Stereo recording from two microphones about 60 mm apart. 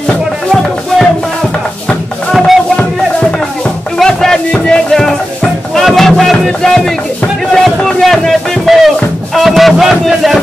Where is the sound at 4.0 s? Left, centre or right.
Centre.